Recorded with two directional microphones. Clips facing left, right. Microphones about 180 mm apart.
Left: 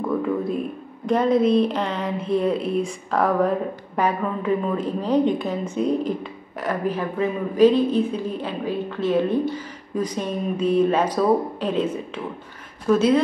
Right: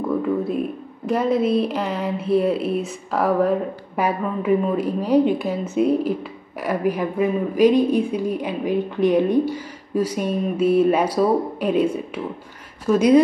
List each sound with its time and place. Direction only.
1.0 s a woman's voice: 5° right (ahead or behind)